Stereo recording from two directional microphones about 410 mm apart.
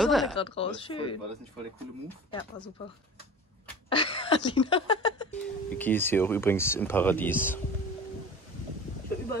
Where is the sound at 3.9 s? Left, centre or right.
Centre.